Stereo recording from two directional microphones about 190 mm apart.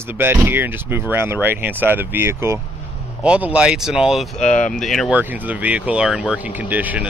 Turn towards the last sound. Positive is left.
turn(degrees=-10)  # may be behind; listen again after turning